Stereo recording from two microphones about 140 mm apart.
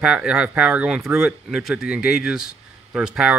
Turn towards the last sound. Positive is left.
turn(degrees=-5)  # may be behind; listen again after turning